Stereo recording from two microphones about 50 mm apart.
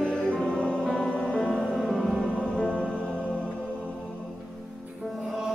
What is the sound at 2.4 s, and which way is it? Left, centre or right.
Music, left.